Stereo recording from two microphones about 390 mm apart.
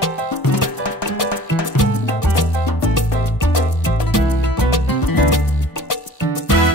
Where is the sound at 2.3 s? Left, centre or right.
Left.